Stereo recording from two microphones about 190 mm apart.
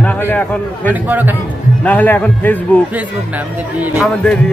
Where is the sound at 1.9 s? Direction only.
10° left (ahead or behind).